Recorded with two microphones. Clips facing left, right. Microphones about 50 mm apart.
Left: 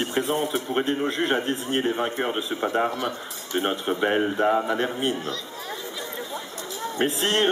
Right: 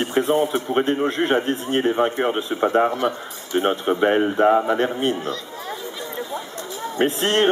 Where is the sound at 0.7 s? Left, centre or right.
Right.